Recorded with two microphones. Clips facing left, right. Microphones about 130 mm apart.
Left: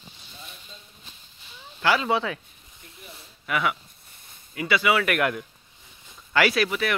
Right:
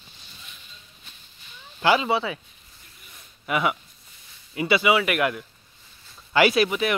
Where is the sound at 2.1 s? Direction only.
5° right (ahead or behind).